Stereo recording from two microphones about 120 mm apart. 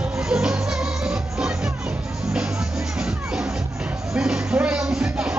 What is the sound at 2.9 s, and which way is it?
Music, 5° right (ahead or behind).